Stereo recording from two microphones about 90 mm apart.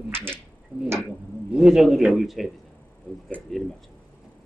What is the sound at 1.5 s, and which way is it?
Speech, 5° right (ahead or behind).